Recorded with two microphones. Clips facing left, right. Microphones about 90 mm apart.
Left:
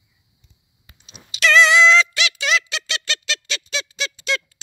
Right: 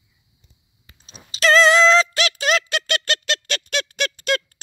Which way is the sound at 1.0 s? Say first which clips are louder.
Right 1 dB; 40° right (ahead or behind).